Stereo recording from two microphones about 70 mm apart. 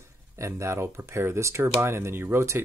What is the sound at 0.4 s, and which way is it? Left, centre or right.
Speech, right.